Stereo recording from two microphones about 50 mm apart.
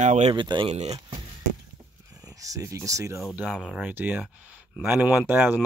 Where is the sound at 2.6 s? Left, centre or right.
Right.